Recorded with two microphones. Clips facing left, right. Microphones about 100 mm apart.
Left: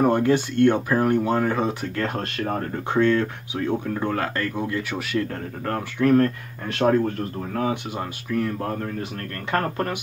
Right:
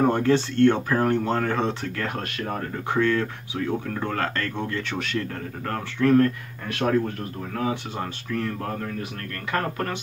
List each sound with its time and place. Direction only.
0.0 s speech: 15° left (ahead or behind)
2.0 s speech: 25° left (ahead or behind)
6.1 s speech: 30° left (ahead or behind)
9.5 s speech: 30° left (ahead or behind)